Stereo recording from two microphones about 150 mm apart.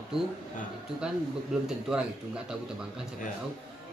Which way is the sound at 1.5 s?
5° right (ahead or behind).